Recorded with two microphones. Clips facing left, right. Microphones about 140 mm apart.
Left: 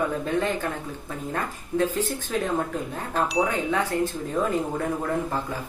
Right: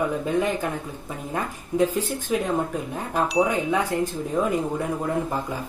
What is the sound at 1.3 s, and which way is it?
Speech, 15° right (ahead or behind).